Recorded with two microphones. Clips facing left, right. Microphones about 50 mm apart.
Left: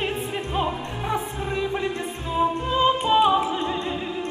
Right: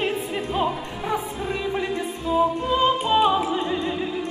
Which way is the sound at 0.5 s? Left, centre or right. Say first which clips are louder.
Right 1 dB; centre.